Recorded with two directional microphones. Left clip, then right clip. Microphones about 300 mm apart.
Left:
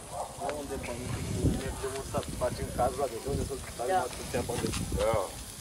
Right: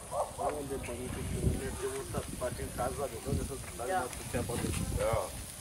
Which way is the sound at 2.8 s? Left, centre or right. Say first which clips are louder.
Left 6 dB; left.